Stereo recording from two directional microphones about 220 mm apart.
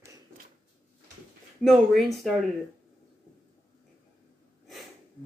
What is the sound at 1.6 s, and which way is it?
Speech, centre (ahead or behind).